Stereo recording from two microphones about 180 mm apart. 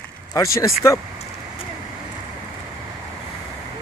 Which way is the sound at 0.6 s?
15° left (ahead or behind).